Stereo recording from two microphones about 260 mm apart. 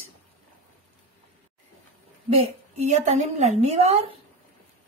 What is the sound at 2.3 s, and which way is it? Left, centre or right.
Speech, right.